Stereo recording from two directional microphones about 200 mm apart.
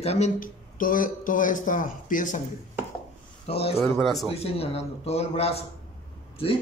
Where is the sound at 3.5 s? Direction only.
30° left (ahead or behind).